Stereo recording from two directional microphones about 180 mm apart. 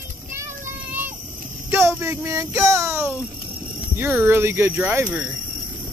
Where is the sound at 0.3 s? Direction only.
15° right (ahead or behind).